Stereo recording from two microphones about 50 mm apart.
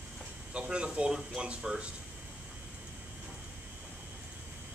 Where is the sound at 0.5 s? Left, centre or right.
Centre.